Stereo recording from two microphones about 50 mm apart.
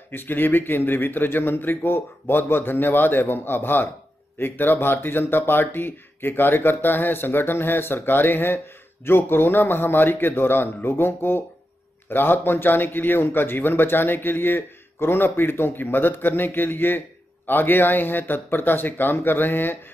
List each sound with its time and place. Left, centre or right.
0.1 s speech: left